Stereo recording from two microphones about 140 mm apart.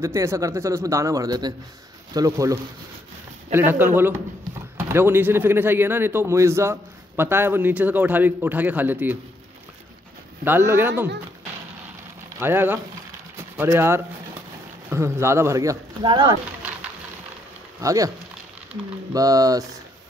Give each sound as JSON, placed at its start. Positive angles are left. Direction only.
{"t": 0.0, "sound": "speech", "side_deg": -20}
{"t": 10.4, "sound": "speech", "side_deg": -15}
{"t": 12.4, "sound": "speech", "side_deg": -15}
{"t": 17.7, "sound": "speech", "side_deg": -25}
{"t": 19.1, "sound": "speech", "side_deg": -25}